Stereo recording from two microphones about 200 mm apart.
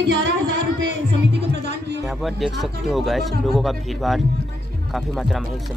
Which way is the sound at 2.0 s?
Centre (ahead or behind).